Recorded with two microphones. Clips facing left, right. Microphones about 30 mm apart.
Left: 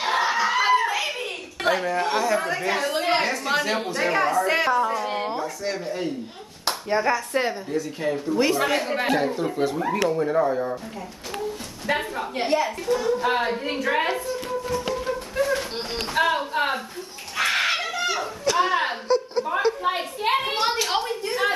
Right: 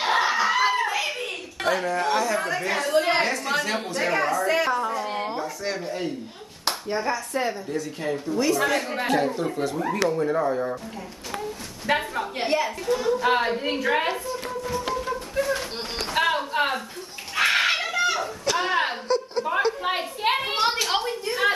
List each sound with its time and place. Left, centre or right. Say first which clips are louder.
0.0 s a sound: even; centre
1.6 s a woman's voice: left 1 dB; centre
4.6 s a sound: left 3 dB; centre
5.4 s a woman's voice: left 1 dB; centre
7.1 s a woman's voice: left 3 dB; left
7.7 s a woman's voice: left 2 dB; centre
8.5 s a woman's voice: left 1 dB; centre
12.0 s a woman's voice: left 1 dB; centre
15.0 s music: left 1 dB; centre
16.1 s a sound: left 1 dB; centre
18.1 s a woman's voice: left 2 dB; centre